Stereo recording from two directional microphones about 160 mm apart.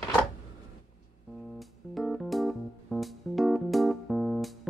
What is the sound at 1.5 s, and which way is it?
Music, centre (ahead or behind).